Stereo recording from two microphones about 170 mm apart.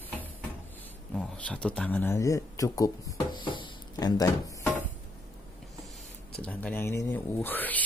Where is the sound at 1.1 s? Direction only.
5° left (ahead or behind); by 4.5 s 20° left (ahead or behind).